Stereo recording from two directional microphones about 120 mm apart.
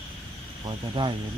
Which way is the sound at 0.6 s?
40° right (ahead or behind).